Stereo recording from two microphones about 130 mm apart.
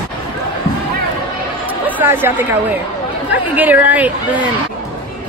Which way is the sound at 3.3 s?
10° right (ahead or behind).